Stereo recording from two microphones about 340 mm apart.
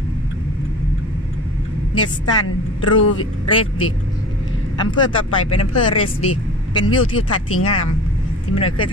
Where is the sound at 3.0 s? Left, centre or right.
Left.